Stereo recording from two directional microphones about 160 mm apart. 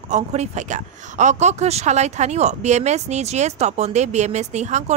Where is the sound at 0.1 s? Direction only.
45° right (ahead or behind).